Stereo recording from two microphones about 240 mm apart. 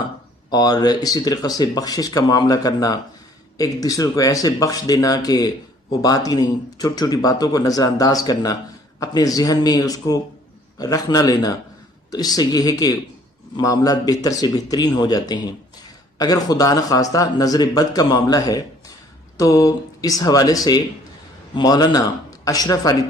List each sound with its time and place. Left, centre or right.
0.5 s speech: centre